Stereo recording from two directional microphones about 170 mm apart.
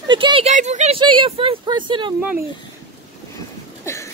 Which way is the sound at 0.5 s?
45° right (ahead or behind).